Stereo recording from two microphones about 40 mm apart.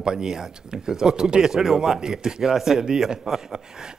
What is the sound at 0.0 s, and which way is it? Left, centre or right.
A man's voice, centre.